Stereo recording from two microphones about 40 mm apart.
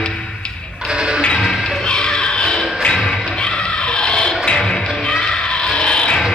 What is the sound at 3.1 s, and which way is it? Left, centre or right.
Crowd, centre.